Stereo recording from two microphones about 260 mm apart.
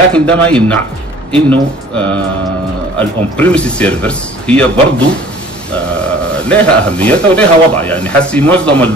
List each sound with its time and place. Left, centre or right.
0.1 s speech: centre
6.5 s speech: centre